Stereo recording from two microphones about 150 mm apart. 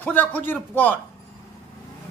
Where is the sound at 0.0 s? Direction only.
10° left (ahead or behind).